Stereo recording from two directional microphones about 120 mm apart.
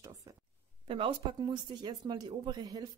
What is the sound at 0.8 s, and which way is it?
Speech, 45° right (ahead or behind).